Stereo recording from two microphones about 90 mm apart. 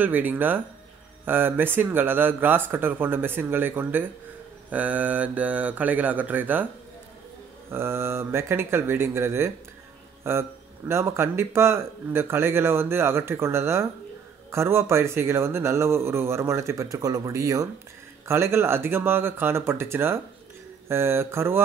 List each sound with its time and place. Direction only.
0.0 s speech: 20° right (ahead or behind)
7.7 s speech: 30° right (ahead or behind)